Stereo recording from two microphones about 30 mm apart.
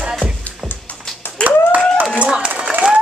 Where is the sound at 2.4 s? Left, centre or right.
Right.